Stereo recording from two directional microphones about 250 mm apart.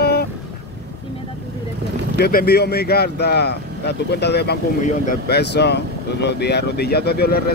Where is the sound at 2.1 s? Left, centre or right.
Left.